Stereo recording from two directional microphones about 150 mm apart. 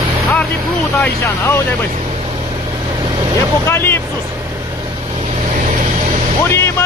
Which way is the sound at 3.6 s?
15° left (ahead or behind).